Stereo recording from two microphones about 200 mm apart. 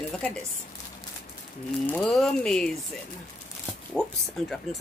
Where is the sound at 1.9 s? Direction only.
5° left (ahead or behind).